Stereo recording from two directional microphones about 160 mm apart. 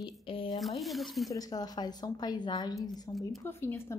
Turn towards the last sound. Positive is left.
turn(degrees=15)  # may be behind; listen again after turning